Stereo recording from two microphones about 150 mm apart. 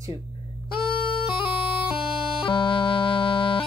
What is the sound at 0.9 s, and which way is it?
Bagpipes, 35° left (ahead or behind).